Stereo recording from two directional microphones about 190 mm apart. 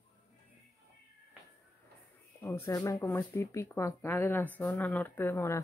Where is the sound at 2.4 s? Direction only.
15° left (ahead or behind).